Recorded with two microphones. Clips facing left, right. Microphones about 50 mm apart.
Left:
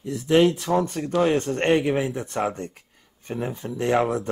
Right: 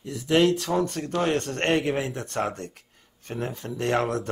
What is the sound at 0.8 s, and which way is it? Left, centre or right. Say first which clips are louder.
Speech: left 2 dB; left.